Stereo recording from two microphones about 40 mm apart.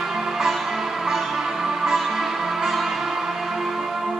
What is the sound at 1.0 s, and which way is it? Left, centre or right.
Music, centre.